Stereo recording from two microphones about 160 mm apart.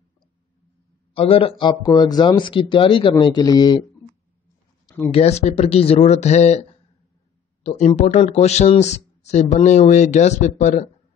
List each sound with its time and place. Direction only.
1.1 s speech: 35° left (ahead or behind)
5.1 s speech: 40° left (ahead or behind)